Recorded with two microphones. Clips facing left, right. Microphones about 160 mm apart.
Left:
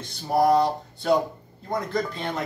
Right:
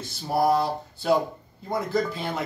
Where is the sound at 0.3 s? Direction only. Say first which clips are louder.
Left 3 dB; 5° right (ahead or behind).